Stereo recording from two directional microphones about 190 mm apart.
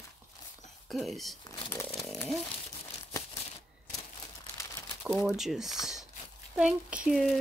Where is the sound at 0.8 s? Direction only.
Centre (ahead or behind).